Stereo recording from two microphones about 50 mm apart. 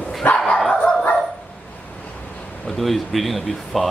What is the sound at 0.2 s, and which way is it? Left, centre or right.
Dog, left.